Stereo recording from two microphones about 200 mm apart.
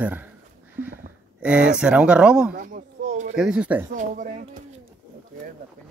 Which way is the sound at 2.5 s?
40° right (ahead or behind).